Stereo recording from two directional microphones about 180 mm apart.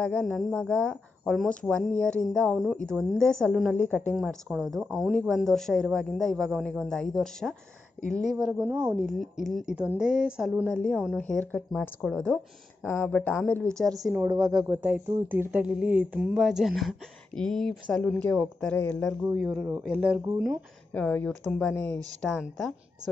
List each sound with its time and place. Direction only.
0.0 s speech: 5° left (ahead or behind)
3.7 s speech: 10° left (ahead or behind)
8.5 s speech: 15° right (ahead or behind)
9.0 s speech: centre (ahead or behind)
13.7 s a woman's voice: 20° right (ahead or behind)
14.8 s speech: 10° right (ahead or behind); by 19.1 s 5° left (ahead or behind)
19.3 s speech: 10° right (ahead or behind)
20.9 s speech: 10° left (ahead or behind)